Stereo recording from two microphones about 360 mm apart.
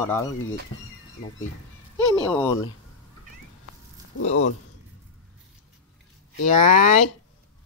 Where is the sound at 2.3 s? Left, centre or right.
Centre.